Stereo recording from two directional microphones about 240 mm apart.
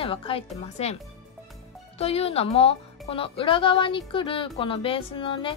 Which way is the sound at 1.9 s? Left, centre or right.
Left.